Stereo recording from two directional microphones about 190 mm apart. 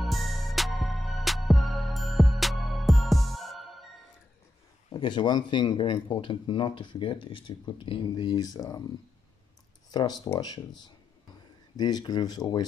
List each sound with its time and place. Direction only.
0.0 s music: centre (ahead or behind)
4.8 s speech: 25° left (ahead or behind)
9.8 s a sound: 20° left (ahead or behind)
10.2 s speech: 20° left (ahead or behind)
11.7 s speech: 20° left (ahead or behind)